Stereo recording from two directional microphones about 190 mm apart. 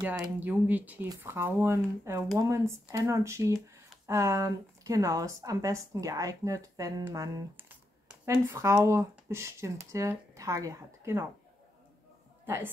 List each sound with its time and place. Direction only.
0.0 s speech: 5° right (ahead or behind)